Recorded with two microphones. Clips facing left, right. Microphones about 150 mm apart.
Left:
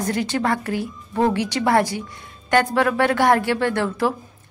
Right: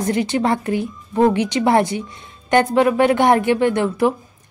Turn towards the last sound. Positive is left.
turn(degrees=-15)  # may be behind; listen again after turning